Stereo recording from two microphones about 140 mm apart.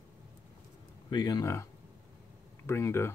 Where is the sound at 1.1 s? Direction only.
30° left (ahead or behind).